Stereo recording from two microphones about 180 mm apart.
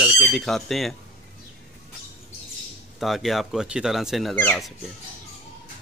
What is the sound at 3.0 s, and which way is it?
Speech, centre (ahead or behind).